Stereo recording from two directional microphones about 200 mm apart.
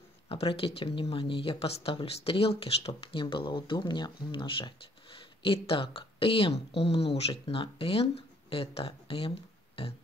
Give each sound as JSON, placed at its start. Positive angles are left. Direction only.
{"t": 0.3, "sound": "speech", "side_deg": 25}